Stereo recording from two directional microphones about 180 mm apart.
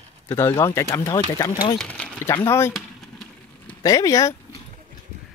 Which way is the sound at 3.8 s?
20° left (ahead or behind).